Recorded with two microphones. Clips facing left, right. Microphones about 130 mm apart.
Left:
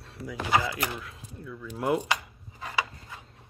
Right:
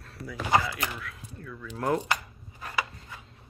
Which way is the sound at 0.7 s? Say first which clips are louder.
Left 1 dB; 25° left (ahead or behind).